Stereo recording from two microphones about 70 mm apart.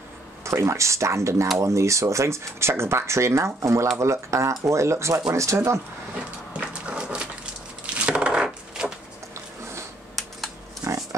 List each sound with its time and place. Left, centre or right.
0.5 s speech: right
6.5 s horse: centre
7.8 s a sound: centre
10.8 s pig: right